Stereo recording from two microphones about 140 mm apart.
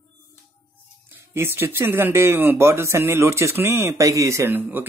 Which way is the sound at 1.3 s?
15° right (ahead or behind).